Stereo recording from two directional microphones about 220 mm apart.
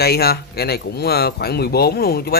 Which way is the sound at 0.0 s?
45° left (ahead or behind).